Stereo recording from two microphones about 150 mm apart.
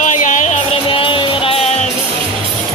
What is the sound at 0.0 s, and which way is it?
Music, 55° left (ahead or behind).